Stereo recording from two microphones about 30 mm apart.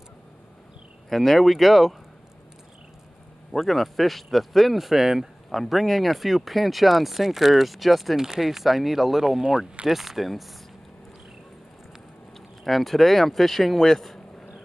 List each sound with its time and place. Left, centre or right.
1.1 s speech: centre
3.5 s speech: centre
5.5 s speech: centre
9.8 s speech: centre
12.4 s speech: centre